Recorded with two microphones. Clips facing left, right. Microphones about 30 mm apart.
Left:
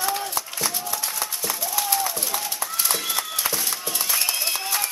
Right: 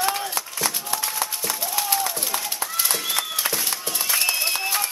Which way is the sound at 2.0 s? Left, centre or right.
Centre.